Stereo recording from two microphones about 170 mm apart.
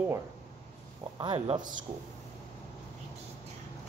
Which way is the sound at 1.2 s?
35° right (ahead or behind).